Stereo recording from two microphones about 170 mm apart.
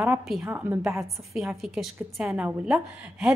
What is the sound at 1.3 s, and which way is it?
A woman's voice, centre (ahead or behind).